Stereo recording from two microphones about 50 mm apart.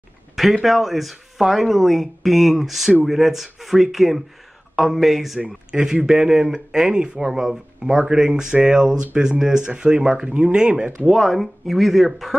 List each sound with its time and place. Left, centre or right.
0.4 s speech: centre
5.7 s speech: centre
7.3 s speech: centre
11.1 s speech: centre